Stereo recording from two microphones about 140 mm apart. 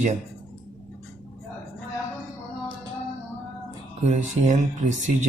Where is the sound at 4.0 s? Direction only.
55° right (ahead or behind).